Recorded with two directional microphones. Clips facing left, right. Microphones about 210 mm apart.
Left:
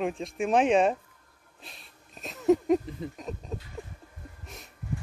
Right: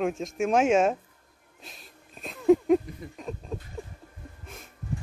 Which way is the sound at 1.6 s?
Centre (ahead or behind).